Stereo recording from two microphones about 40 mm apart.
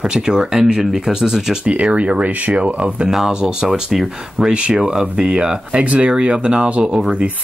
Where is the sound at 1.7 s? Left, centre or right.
Right.